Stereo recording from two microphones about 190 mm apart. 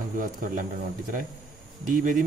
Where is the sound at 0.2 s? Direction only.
45° right (ahead or behind).